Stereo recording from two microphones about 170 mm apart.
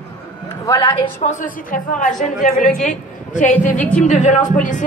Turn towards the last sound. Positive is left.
turn(degrees=50)  # may be behind; listen again after turning